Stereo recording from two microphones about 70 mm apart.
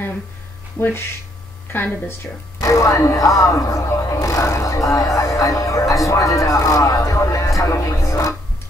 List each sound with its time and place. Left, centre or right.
0.7 s speech: left
2.6 s speech: left